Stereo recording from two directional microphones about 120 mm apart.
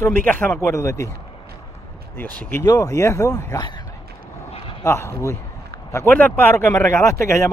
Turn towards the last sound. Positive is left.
turn(degrees=25)  # may be behind; listen again after turning